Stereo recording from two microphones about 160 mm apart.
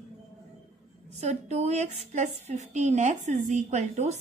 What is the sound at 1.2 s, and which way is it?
A woman's voice, 45° right (ahead or behind).